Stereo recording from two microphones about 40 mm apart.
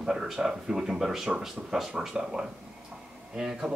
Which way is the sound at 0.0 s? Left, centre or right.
Centre.